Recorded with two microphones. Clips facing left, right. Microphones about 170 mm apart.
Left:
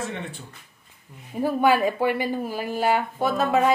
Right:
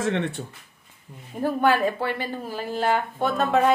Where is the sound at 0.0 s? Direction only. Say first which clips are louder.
Right 7 dB; 80° right.